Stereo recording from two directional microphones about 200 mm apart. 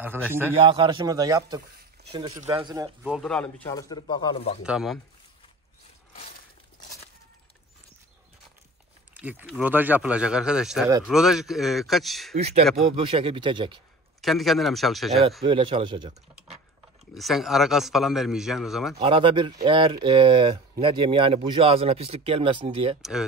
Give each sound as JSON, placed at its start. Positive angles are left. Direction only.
{"t": 0.3, "sound": "a man's voice", "side_deg": -10}
{"t": 0.6, "sound": "speech", "side_deg": -25}
{"t": 3.0, "sound": "a man's voice", "side_deg": 0}
{"t": 3.7, "sound": "speech", "side_deg": 20}
{"t": 4.6, "sound": "a man's voice", "side_deg": 0}
{"t": 9.2, "sound": "a man's voice", "side_deg": -10}
{"t": 12.9, "sound": "speech", "side_deg": -25}
{"t": 14.2, "sound": "a man's voice", "side_deg": 0}
{"t": 15.4, "sound": "speech", "side_deg": -25}
{"t": 17.1, "sound": "a man's voice", "side_deg": 0}
{"t": 18.9, "sound": "speech", "side_deg": -25}